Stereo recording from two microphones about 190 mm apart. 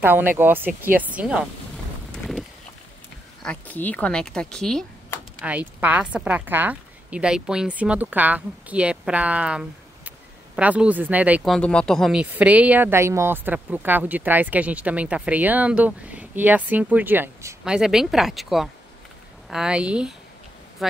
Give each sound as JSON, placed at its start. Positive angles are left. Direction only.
{"t": 0.0, "sound": "a woman's voice", "side_deg": -10}
{"t": 3.4, "sound": "speech", "side_deg": 10}
{"t": 5.5, "sound": "a woman's voice", "side_deg": -10}